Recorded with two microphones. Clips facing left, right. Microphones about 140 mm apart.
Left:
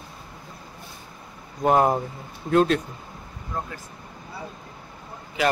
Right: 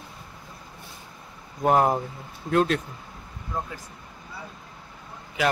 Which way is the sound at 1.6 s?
Centre (ahead or behind).